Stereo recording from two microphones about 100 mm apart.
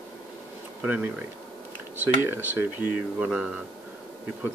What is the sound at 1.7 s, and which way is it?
Computer keyboard, 20° right (ahead or behind).